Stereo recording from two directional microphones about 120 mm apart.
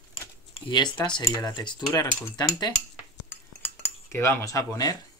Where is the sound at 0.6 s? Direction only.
40° left (ahead or behind).